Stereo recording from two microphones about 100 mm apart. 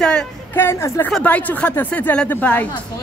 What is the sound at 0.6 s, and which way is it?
Speech, 25° left (ahead or behind).